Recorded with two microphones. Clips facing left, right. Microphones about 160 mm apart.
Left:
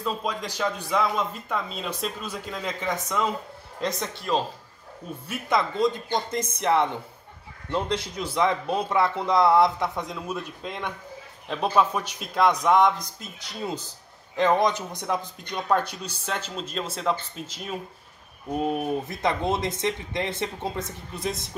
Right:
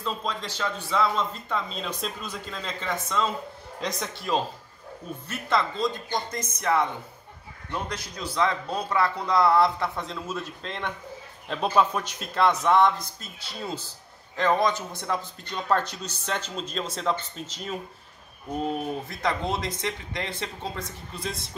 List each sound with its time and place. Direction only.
0.0 s speech: 10° left (ahead or behind)
3.8 s a man's voice: centre (ahead or behind)
5.3 s a man's voice: 15° left (ahead or behind)
19.2 s a man's voice: 20° left (ahead or behind)